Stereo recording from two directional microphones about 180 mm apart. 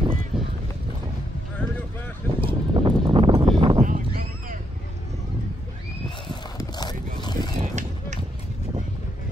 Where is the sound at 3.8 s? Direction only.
45° right (ahead or behind).